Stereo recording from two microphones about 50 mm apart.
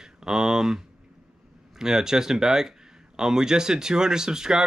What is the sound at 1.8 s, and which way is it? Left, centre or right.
Speech, centre.